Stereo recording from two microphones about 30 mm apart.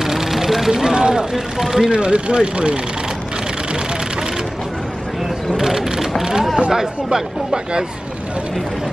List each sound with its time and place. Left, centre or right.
0.0 s vehicle: centre
0.7 s speech: centre
1.3 s speech: centre
1.9 s speech: right
5.6 s a sound: centre
6.7 s speech: centre